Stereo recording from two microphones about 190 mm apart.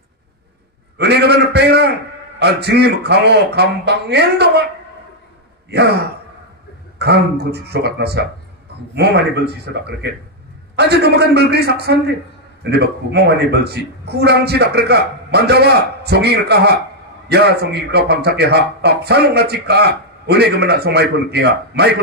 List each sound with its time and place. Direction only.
0.9 s a sound: 60° right (ahead or behind)
2.3 s speech: 60° right (ahead or behind)
5.7 s speech: 60° right (ahead or behind)